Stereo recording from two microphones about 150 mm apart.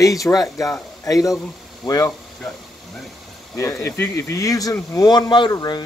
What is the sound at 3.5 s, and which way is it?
Speech, 20° left (ahead or behind).